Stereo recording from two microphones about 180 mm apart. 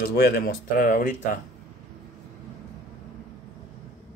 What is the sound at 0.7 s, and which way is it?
Speech, 50° left (ahead or behind).